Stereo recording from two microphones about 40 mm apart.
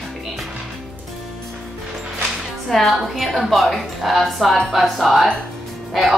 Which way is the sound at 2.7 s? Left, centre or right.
Centre.